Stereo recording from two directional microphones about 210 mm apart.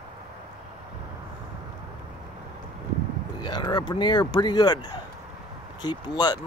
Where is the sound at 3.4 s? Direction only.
20° left (ahead or behind).